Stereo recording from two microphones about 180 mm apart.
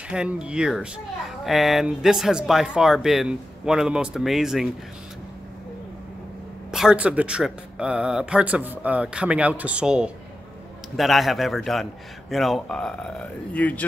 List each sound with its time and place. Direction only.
0.1 s a child's voice: 5° right (ahead or behind)
6.7 s a child's voice: 5° right (ahead or behind)